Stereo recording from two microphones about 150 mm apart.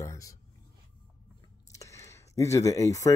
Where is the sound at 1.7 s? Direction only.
20° left (ahead or behind).